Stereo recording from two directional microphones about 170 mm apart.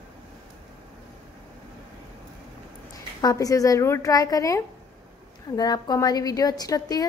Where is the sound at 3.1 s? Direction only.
20° left (ahead or behind).